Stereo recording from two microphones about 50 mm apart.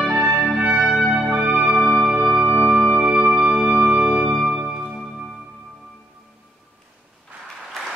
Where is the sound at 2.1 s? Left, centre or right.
Centre.